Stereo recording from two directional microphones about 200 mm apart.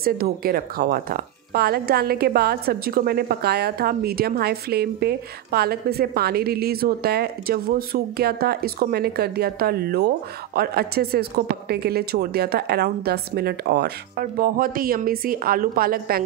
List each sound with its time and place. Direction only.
0.0 s a woman's voice: 50° right (ahead or behind)